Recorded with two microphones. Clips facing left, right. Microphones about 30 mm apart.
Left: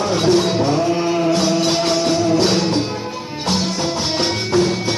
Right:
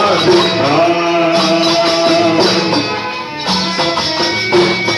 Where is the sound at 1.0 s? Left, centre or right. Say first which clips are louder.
Right 5 dB; right.